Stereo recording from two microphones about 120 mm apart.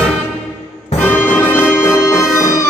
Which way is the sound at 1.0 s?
15° left (ahead or behind).